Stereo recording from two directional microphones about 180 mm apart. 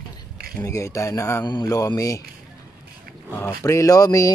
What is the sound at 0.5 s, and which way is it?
Speech, 15° left (ahead or behind).